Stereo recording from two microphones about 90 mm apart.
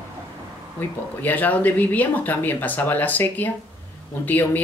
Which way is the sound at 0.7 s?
20° left (ahead or behind).